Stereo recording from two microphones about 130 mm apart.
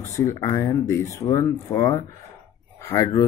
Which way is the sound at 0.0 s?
20° left (ahead or behind).